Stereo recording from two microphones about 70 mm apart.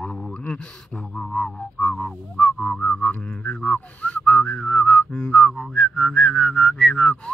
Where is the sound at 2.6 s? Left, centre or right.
Centre.